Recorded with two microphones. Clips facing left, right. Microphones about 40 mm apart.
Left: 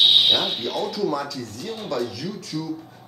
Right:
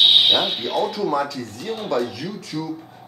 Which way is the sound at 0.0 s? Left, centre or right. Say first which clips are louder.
Right 2 dB; centre.